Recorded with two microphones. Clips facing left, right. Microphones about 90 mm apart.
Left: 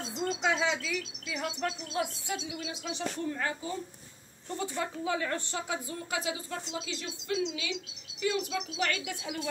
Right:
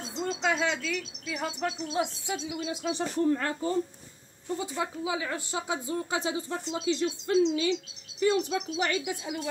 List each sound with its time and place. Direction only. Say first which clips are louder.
0.2 s speech: right 1 dB; centre (ahead or behind)
1.4 s a woman's voice: right 2 dB; 15° right (ahead or behind)
2.6 s music: right 5 dB; 40° right (ahead or behind)
3.3 s speech: right 4 dB; 55° right (ahead or behind)
4.6 s a woman's voice: even; 15° right (ahead or behind)
5.7 s speech: right 7 dB; 25° right (ahead or behind)
8.2 s music: right 5 dB; 30° right (ahead or behind)
8.7 s a woman's voice: right 3 dB; 20° right (ahead or behind)